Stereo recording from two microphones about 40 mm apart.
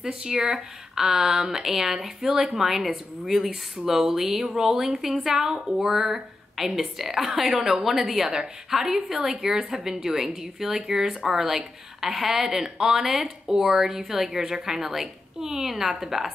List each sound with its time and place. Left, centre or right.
0.0 s speech: centre
9.8 s speech: right